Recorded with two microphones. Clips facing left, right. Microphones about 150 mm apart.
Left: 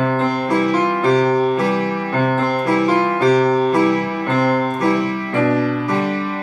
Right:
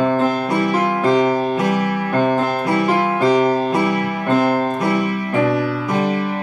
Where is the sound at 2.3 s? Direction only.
15° right (ahead or behind).